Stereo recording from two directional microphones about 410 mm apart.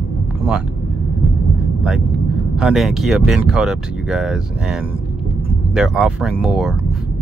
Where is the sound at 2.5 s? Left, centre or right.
Centre.